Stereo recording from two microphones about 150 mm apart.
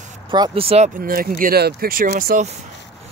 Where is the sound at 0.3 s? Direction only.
35° right (ahead or behind).